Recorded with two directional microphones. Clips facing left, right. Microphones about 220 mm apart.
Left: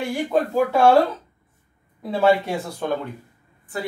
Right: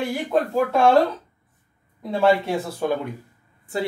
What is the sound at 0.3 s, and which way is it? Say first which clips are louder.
Speech: left 1 dB; 5° left (ahead or behind).